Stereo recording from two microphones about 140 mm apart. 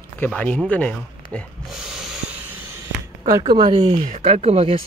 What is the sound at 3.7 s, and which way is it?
Speech, 55° right (ahead or behind).